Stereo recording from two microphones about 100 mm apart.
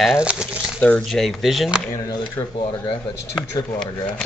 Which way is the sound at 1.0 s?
Centre (ahead or behind).